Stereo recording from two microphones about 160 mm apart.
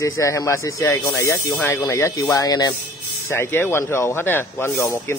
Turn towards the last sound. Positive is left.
turn(degrees=15)  # may be behind; listen again after turning